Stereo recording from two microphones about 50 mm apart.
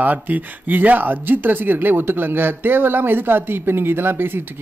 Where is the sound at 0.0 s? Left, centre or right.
Right.